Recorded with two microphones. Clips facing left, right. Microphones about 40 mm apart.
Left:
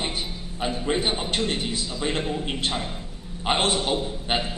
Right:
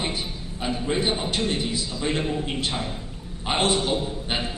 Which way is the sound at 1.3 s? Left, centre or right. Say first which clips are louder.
Even; left.